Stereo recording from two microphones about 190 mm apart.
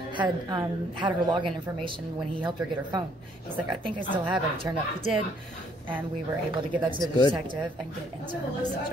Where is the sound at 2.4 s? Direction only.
25° right (ahead or behind).